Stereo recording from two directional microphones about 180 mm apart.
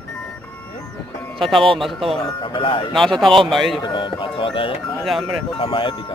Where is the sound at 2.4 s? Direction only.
30° left (ahead or behind).